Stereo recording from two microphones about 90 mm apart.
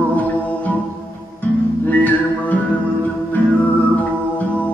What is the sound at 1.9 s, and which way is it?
Music, 20° left (ahead or behind).